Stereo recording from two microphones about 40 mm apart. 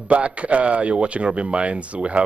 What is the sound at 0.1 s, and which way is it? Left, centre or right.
A man's voice, right.